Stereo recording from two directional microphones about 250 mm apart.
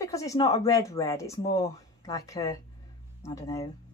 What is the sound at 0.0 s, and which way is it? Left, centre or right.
Speech, centre.